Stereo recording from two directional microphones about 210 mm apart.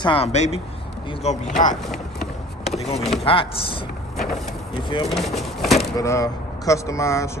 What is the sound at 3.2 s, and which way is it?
Speech, 25° left (ahead or behind).